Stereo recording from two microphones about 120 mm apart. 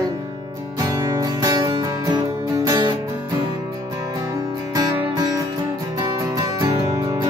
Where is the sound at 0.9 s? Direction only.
35° right (ahead or behind).